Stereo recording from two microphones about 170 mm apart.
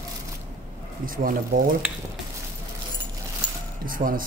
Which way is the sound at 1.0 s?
55° right (ahead or behind).